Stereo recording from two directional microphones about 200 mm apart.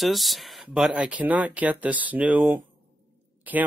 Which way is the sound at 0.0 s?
Centre (ahead or behind).